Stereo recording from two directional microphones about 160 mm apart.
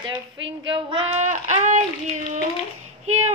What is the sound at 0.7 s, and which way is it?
Child singing, 30° right (ahead or behind).